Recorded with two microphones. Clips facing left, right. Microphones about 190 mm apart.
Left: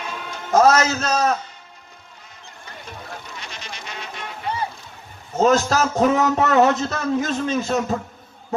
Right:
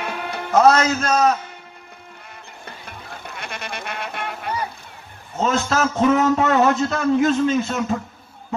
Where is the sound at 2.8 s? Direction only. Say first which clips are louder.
Left 3 dB; 55° right (ahead or behind).